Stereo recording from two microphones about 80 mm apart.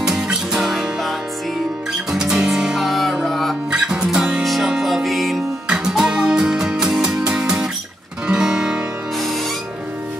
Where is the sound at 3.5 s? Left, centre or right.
Centre.